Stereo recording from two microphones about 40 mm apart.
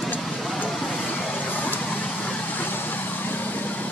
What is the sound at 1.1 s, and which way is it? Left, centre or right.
Vehicle, left.